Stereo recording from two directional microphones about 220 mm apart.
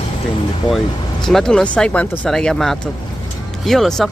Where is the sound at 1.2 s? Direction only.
Centre (ahead or behind).